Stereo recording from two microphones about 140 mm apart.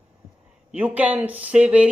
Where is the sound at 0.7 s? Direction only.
10° right (ahead or behind).